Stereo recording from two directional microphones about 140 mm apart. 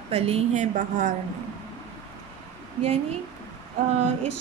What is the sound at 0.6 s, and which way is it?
Speech, 60° right (ahead or behind).